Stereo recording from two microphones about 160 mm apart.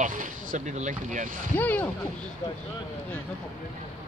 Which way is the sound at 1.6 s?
10° left (ahead or behind).